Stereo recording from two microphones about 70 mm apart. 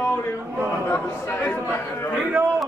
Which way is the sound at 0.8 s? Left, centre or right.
Left.